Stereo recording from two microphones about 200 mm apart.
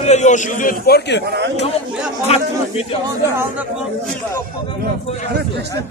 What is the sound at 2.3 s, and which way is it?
Speech, 30° left (ahead or behind).